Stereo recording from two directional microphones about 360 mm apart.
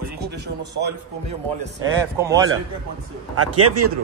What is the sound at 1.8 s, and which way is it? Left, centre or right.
Speech, centre.